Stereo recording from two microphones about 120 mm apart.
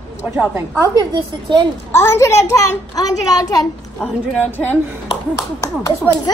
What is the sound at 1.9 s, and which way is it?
A child's voice, 20° left (ahead or behind).